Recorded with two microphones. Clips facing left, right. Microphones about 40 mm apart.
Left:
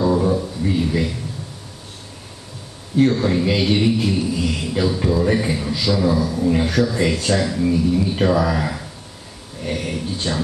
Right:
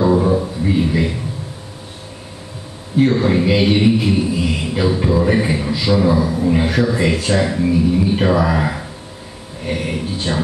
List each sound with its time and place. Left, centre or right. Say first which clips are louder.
0.0 s music: right 3 dB; centre
3.0 s a man's voice: right 2 dB; centre